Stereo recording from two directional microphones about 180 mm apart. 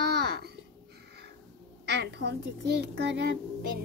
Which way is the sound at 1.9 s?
70° right (ahead or behind).